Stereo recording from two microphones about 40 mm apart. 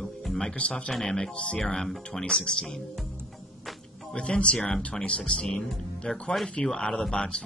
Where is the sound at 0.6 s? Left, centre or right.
Left.